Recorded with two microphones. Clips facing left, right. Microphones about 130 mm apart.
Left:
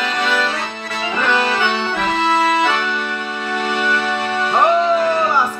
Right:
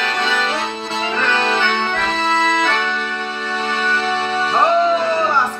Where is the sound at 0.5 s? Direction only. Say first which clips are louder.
Right 3 dB; 25° right (ahead or behind).